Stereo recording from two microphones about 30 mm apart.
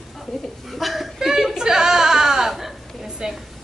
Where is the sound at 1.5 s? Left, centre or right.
Right.